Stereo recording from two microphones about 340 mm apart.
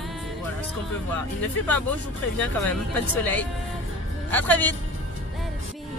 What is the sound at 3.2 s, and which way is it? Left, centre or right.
Speech, centre.